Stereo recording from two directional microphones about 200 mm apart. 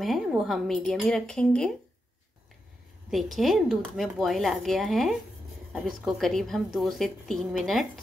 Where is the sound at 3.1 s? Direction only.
Centre (ahead or behind).